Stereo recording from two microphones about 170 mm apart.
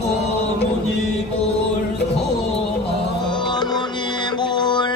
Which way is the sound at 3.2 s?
25° left (ahead or behind).